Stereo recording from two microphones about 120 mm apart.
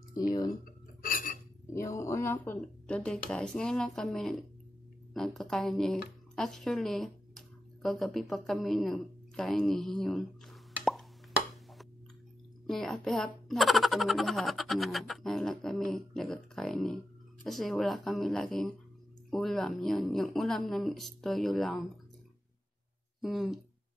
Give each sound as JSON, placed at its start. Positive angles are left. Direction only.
{"t": 0.1, "sound": "speech", "side_deg": 30}
{"t": 1.7, "sound": "speech", "side_deg": 25}
{"t": 12.6, "sound": "a child's voice", "side_deg": 0}
{"t": 23.2, "sound": "a child's voice", "side_deg": 0}